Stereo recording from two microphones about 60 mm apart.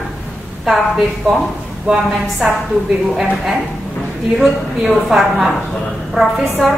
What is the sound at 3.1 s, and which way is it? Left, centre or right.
A woman's voice, centre.